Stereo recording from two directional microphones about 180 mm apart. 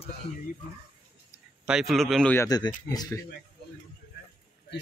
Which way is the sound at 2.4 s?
20° left (ahead or behind).